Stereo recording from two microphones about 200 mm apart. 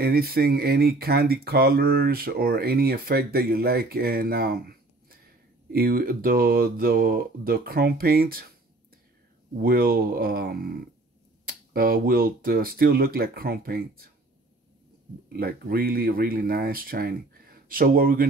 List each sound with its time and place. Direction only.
0.0 s speech: 50° right (ahead or behind)
9.6 s speech: 45° right (ahead or behind)
15.3 s speech: 50° right (ahead or behind)